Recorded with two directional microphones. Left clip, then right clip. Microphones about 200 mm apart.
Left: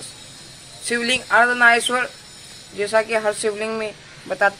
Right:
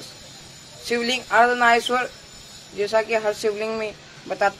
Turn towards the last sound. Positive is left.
turn(degrees=5)  # may be behind; listen again after turning